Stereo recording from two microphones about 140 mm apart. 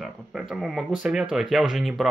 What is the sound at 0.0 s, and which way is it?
Speech, 5° right (ahead or behind).